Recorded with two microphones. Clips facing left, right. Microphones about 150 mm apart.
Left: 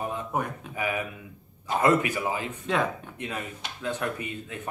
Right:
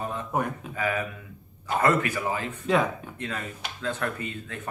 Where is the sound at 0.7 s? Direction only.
15° left (ahead or behind).